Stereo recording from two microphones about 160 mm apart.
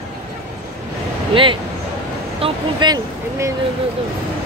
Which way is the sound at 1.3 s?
30° right (ahead or behind).